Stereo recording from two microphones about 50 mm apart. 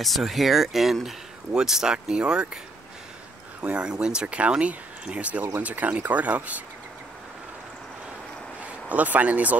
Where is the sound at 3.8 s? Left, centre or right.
Centre.